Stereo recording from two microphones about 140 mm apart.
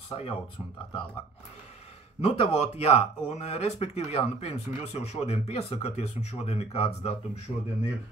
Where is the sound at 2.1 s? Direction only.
45° left (ahead or behind).